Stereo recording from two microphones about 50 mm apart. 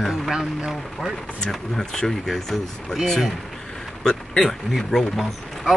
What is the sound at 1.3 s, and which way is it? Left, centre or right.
Speech, centre.